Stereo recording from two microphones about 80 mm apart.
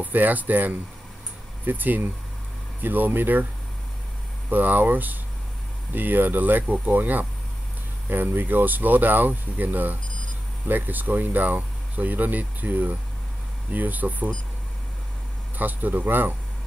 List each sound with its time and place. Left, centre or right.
0.0 s speech: right
4.5 s speech: right
15.5 s speech: right